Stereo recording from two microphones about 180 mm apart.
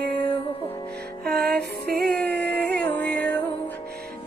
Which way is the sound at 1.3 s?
60° right (ahead or behind).